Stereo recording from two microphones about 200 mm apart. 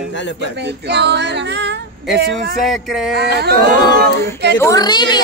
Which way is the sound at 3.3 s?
50° right (ahead or behind).